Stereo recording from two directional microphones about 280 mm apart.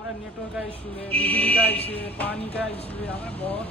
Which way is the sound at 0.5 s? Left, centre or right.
Centre.